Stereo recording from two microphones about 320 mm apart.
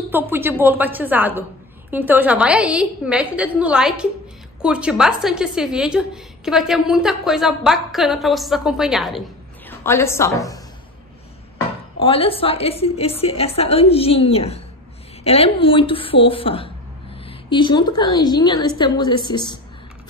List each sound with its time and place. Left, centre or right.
0.1 s a woman's voice: centre
12.0 s speech: centre